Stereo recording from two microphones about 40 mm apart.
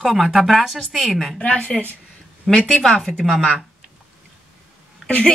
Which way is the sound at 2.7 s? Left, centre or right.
Centre.